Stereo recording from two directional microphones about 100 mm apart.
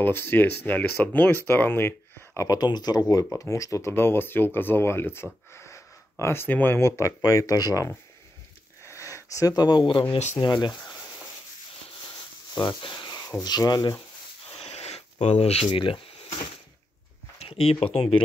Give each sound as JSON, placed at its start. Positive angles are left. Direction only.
{"t": 0.0, "sound": "speech", "side_deg": 20}
{"t": 2.4, "sound": "speech", "side_deg": 40}
{"t": 7.0, "sound": "speech", "side_deg": 35}
{"t": 8.8, "sound": "sniff", "side_deg": 30}
{"t": 10.4, "sound": "speech", "side_deg": 50}
{"t": 10.8, "sound": "a sound", "side_deg": 30}
{"t": 12.5, "sound": "speech", "side_deg": 50}
{"t": 14.5, "sound": "a sound", "side_deg": 90}
{"t": 17.4, "sound": "speech", "side_deg": 90}